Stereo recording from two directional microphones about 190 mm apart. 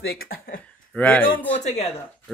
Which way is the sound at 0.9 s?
10° left (ahead or behind).